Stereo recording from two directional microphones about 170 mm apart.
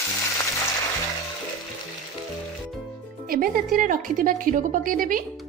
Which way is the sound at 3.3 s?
60° right (ahead or behind).